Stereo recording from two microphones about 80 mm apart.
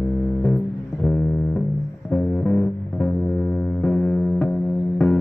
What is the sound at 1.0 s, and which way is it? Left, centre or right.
Music, centre.